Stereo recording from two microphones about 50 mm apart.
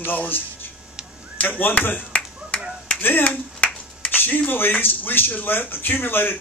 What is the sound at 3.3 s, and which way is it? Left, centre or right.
Finger snapping, left.